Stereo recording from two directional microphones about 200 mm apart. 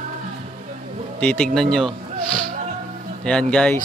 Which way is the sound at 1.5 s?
Centre (ahead or behind).